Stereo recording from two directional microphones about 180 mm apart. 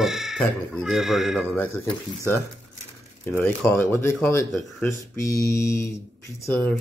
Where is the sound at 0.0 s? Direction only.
Centre (ahead or behind).